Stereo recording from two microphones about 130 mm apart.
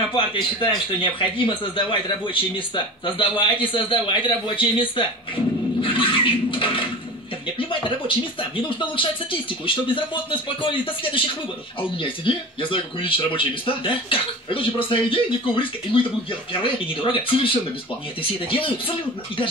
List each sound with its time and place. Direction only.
0.1 s a man's voice: 40° left (ahead or behind)
5.8 s a sound: 40° left (ahead or behind)
8.1 s a man's voice: 40° left (ahead or behind)